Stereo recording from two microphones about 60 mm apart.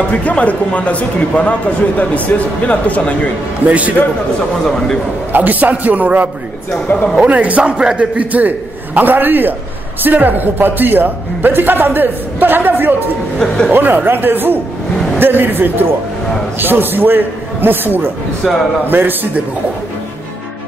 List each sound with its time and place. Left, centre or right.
0.1 s a man's voice: left
3.6 s a man's voice: right
4.6 s a man's voice: centre
5.3 s a man's voice: right
18.4 s a man's voice: centre
18.9 s a man's voice: right